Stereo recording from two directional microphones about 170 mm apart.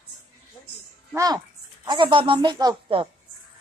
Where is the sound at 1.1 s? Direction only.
20° right (ahead or behind).